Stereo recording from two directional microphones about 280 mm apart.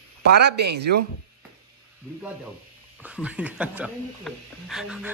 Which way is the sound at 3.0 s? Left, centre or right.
Centre.